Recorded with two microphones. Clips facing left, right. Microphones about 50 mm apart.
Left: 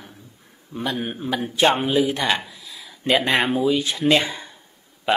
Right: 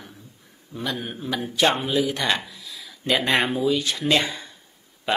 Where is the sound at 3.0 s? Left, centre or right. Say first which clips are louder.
Left 3 dB; left.